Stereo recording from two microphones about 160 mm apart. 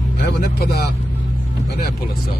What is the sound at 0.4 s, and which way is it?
Speech, 80° left.